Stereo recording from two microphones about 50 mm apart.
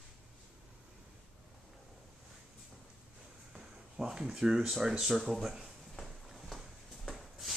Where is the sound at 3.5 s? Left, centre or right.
Centre.